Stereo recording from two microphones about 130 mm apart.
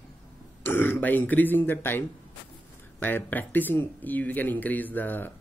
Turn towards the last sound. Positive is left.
turn(degrees=15)  # may be behind; listen again after turning